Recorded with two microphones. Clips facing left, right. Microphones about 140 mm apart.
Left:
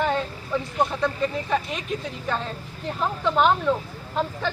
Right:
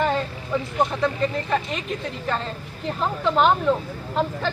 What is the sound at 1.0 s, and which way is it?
Speech, centre (ahead or behind).